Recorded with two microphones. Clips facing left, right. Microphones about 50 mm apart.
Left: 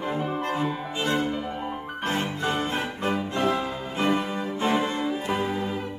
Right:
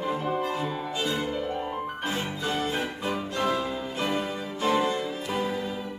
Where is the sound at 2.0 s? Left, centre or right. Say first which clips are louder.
Left 5 dB; left.